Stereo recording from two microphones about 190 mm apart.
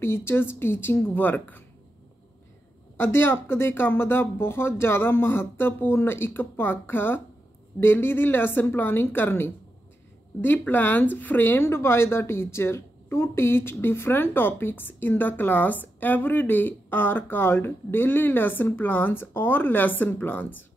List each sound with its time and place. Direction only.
0.0 s speech: 10° left (ahead or behind)
3.0 s speech: 10° left (ahead or behind)